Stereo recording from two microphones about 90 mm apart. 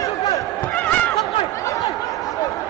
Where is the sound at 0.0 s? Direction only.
40° left (ahead or behind).